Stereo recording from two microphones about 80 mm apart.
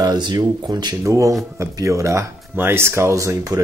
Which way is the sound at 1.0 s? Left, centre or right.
Right.